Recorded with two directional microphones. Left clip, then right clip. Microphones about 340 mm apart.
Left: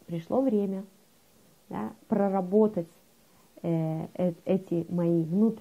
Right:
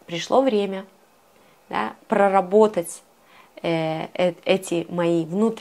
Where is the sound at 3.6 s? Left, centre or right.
Centre.